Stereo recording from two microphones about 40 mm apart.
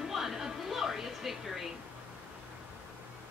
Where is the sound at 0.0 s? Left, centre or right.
Centre.